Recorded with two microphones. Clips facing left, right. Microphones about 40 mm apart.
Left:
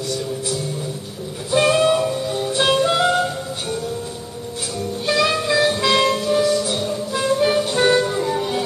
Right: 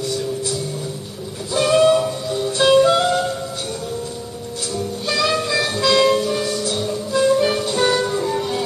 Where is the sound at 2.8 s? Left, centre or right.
Centre.